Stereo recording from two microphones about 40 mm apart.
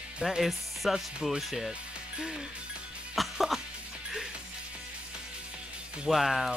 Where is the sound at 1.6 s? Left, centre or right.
Right.